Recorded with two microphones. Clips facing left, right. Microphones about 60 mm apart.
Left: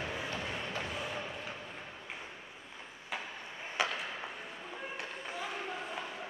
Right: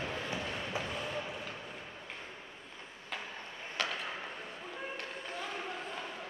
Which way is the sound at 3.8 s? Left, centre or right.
Centre.